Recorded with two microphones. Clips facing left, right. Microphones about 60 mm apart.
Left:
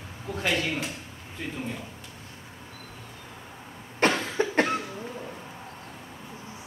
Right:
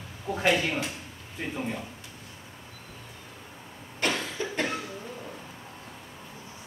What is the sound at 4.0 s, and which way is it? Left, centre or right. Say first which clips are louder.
Cough: left 5 dB; left.